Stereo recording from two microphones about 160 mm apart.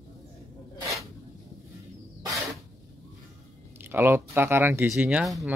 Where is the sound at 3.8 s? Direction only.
15° right (ahead or behind).